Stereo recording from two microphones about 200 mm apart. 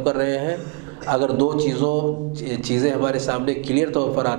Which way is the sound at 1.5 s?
10° right (ahead or behind).